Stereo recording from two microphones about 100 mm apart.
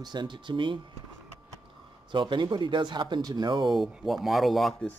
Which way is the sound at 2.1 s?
50° right (ahead or behind).